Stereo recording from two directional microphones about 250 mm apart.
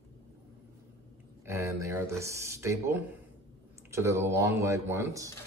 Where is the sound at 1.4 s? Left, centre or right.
Centre.